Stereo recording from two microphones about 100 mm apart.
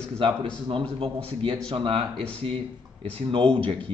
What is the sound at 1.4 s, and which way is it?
Speech, 60° right (ahead or behind).